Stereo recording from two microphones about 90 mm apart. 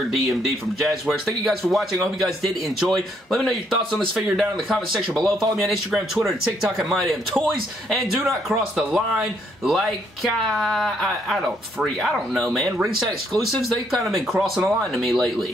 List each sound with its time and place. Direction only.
0.1 s speech: centre (ahead or behind)
12.6 s speech: 35° right (ahead or behind)
13.3 s speech: centre (ahead or behind)